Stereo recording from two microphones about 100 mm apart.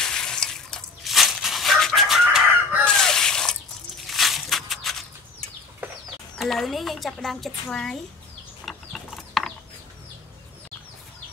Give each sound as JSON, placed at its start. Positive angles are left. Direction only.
{"t": 0.0, "sound": "dog", "side_deg": 5}
{"t": 2.8, "sound": "water", "side_deg": 5}
{"t": 4.1, "sound": "a sound", "side_deg": 0}
{"t": 6.4, "sound": "speech", "side_deg": 0}
{"t": 8.6, "sound": "chicken", "side_deg": 0}